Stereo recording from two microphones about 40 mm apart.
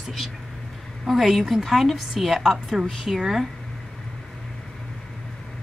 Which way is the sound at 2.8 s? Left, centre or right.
Centre.